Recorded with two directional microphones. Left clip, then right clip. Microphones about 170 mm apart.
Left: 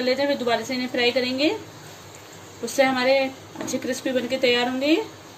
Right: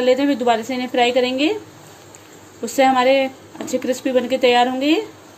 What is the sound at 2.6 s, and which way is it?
A woman's voice, 60° right (ahead or behind).